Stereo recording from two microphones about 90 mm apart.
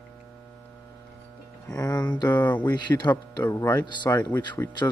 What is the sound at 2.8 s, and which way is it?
Speech, 55° left (ahead or behind).